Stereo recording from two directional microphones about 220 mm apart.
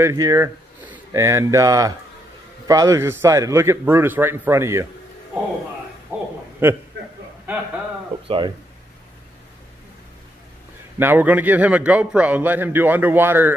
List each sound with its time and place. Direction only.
0.0 s a man's voice: 15° right (ahead or behind)
6.1 s a sound: 10° right (ahead or behind)
6.6 s a man's voice: 10° right (ahead or behind)
8.3 s speech: 20° right (ahead or behind)
11.0 s a man's voice: 10° right (ahead or behind)